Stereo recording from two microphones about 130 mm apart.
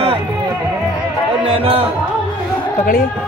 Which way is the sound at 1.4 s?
45° right (ahead or behind).